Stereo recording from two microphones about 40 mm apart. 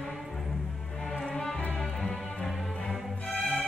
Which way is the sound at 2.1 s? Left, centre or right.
Left.